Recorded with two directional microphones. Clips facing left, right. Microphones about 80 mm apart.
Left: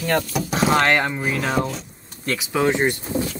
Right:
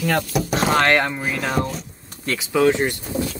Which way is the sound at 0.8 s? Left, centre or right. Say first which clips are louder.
Right 1 dB; centre.